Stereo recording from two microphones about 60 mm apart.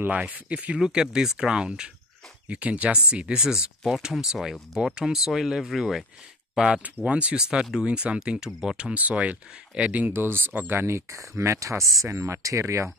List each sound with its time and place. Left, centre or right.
0.2 s speech: right
0.7 s speech: centre
6.8 s speech: right
8.5 s speech: centre
8.7 s speech: right
10.1 s speech: right